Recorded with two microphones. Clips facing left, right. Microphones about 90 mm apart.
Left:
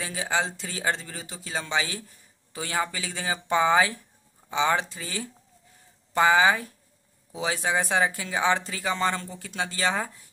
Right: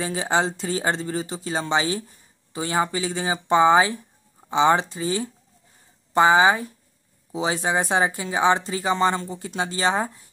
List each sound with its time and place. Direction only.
0.0 s speech: 30° right (ahead or behind)